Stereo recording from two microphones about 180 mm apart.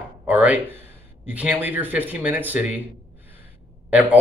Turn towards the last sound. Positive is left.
turn(degrees=-10)  # may be behind; listen again after turning